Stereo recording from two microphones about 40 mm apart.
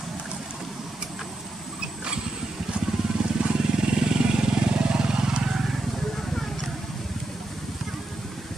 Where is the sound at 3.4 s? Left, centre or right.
Right.